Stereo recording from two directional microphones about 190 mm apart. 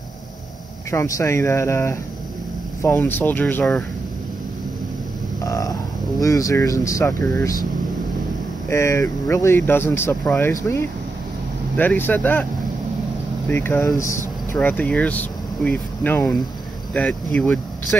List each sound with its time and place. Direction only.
0.9 s speech: 15° left (ahead or behind)
5.4 s speech: 20° left (ahead or behind)
8.6 s speech: 15° left (ahead or behind)
13.5 s speech: 10° left (ahead or behind)